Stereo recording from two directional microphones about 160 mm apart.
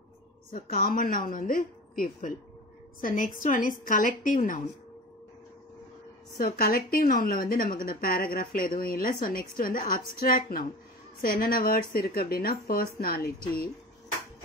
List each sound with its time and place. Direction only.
0.5 s a woman's voice: 65° left (ahead or behind)
6.3 s a woman's voice: 70° left (ahead or behind)